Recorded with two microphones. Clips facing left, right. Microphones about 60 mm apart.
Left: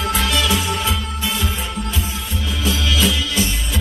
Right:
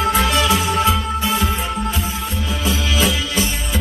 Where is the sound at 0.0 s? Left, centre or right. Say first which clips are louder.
Right 3 dB; right.